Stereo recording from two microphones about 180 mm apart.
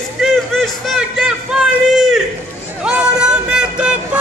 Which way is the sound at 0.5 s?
Centre (ahead or behind).